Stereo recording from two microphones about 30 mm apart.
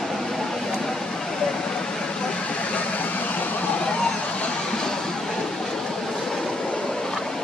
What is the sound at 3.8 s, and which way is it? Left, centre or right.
Vehicle, left.